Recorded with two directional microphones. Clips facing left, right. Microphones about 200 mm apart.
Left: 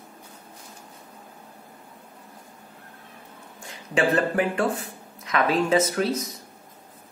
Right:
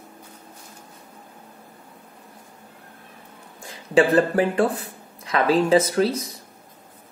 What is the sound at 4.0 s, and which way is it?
Speech, 35° right (ahead or behind).